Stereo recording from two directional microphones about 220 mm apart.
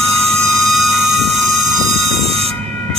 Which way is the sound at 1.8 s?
Centre (ahead or behind).